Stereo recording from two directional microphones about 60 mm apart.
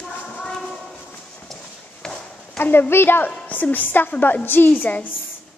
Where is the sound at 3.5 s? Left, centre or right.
Left.